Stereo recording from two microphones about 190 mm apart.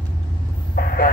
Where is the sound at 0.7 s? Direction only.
50° left (ahead or behind).